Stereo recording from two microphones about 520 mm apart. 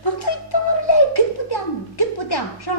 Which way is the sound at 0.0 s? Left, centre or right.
Left.